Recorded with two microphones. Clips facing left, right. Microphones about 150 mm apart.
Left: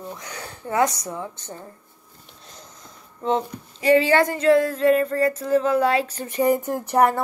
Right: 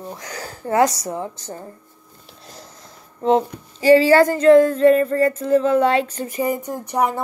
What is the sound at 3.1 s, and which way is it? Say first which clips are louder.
Speech: right 6 dB; 35° right (ahead or behind).